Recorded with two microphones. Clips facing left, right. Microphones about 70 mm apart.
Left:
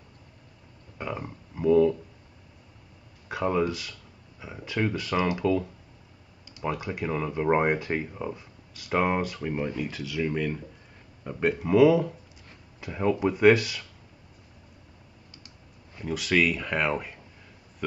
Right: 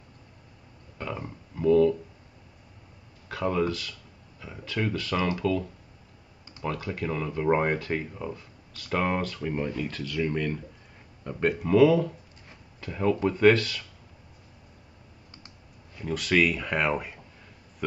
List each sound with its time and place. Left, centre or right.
0.9 s speech: centre
3.3 s speech: centre
16.0 s speech: centre